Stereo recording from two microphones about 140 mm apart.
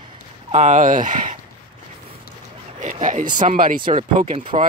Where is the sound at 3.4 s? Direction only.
75° right (ahead or behind).